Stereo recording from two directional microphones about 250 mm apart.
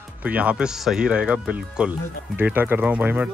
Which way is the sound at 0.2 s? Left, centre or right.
Centre.